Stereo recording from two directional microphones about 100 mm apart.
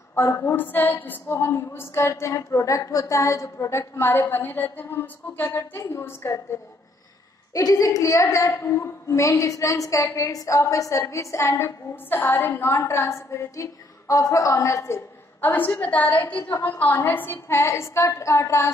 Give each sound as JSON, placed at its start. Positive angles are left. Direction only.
{"t": 0.1, "sound": "a woman's voice", "side_deg": 25}
{"t": 7.5, "sound": "a woman's voice", "side_deg": 35}
{"t": 15.4, "sound": "a woman's voice", "side_deg": 20}